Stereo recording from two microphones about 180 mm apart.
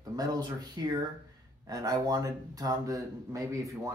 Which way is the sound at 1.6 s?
20° right (ahead or behind).